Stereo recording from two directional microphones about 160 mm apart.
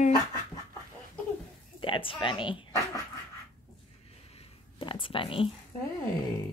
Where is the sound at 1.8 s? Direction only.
35° left (ahead or behind).